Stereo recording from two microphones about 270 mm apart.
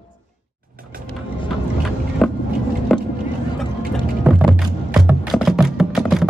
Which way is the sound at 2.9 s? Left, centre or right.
Centre.